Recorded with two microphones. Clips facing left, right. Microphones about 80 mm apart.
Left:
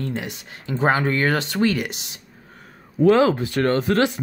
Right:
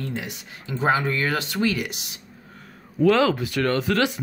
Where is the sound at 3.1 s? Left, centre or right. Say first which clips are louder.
Left 3 dB; left.